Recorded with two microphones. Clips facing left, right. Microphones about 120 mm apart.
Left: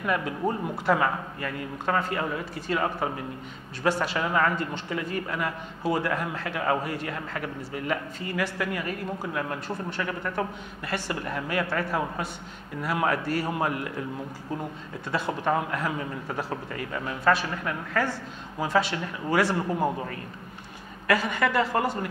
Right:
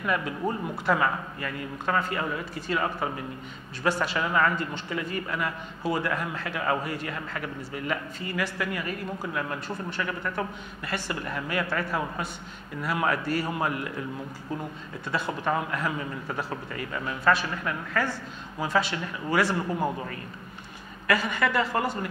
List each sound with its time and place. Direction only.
0.0 s a man's voice: 45° left (ahead or behind)
15.0 s a man's voice: 45° left (ahead or behind)
21.1 s a man's voice: 45° left (ahead or behind)